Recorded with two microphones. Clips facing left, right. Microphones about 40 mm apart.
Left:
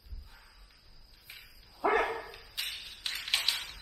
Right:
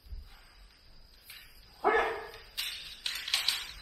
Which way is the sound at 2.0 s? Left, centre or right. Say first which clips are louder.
Right 1 dB; right.